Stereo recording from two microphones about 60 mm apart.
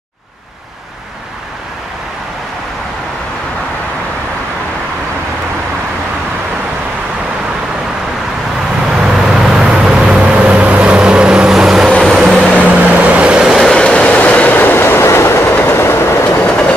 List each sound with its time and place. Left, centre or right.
8.8 s vehicle: centre
12.0 s vehicle: centre
12.4 s vehicle: centre
12.7 s vehicle: right
13.6 s vehicle: centre
13.8 s train: centre; by 16.3 s left